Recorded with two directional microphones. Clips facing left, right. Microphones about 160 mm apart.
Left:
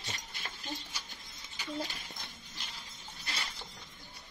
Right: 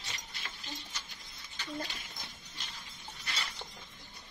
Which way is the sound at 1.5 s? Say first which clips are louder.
Left 2 dB; 10° left (ahead or behind).